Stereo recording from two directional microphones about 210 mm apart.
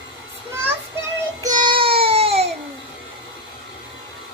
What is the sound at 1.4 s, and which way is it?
Music, 20° right (ahead or behind).